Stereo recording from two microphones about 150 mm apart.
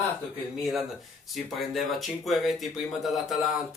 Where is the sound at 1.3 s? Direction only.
Centre (ahead or behind).